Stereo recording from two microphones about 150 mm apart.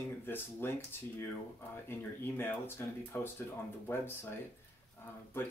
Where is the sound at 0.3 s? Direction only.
15° left (ahead or behind).